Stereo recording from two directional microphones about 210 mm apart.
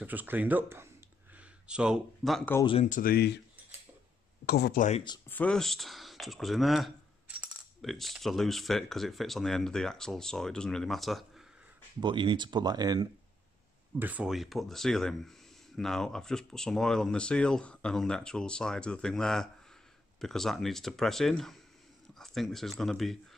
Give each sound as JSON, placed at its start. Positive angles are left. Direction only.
{"t": 0.0, "sound": "speech", "side_deg": -10}
{"t": 2.6, "sound": "speech", "side_deg": 25}
{"t": 2.9, "sound": "speech", "side_deg": 45}
{"t": 4.5, "sound": "speech", "side_deg": 50}
{"t": 5.3, "sound": "speech", "side_deg": 5}
{"t": 12.0, "sound": "speech", "side_deg": -25}
{"t": 13.9, "sound": "speech", "side_deg": -10}